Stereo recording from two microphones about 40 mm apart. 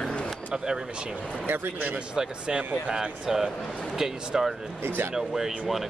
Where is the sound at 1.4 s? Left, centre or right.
Right.